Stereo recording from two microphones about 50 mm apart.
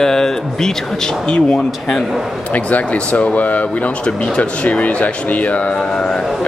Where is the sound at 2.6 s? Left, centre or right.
Left.